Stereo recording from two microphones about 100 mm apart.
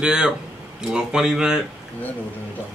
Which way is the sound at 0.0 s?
10° right (ahead or behind).